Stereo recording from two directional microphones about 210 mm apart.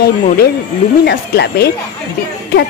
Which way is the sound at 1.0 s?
50° left (ahead or behind).